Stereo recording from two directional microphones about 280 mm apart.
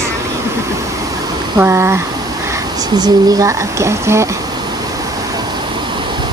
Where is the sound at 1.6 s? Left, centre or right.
Centre.